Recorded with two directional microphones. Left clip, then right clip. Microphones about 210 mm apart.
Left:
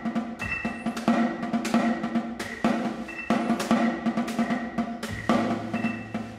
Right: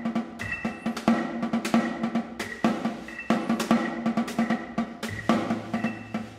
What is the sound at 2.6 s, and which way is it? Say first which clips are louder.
Music: left 1 dB; 25° right (ahead or behind).